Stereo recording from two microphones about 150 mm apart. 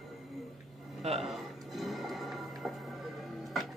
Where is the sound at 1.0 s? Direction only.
45° right (ahead or behind).